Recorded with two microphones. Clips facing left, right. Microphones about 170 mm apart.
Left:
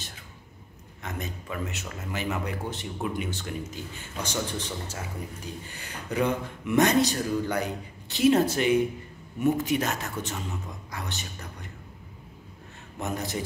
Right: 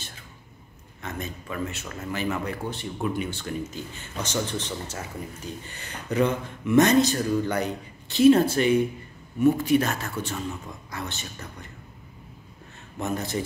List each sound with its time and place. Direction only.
1.0 s speech: 15° left (ahead or behind)
5.7 s speech: 10° left (ahead or behind)
13.0 s speech: 15° left (ahead or behind)